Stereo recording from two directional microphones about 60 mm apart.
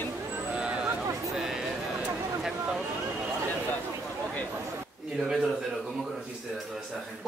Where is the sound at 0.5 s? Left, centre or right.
Centre.